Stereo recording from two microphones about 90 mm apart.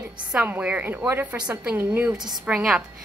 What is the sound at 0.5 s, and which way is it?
A woman's voice, 15° right (ahead or behind).